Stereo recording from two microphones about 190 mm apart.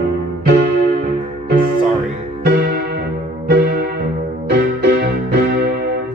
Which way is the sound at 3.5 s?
55° right (ahead or behind).